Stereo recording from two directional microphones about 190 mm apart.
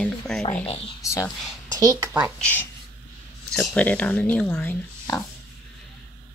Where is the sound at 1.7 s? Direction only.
20° right (ahead or behind).